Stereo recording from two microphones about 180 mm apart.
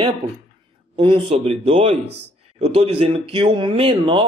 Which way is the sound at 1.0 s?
30° right (ahead or behind).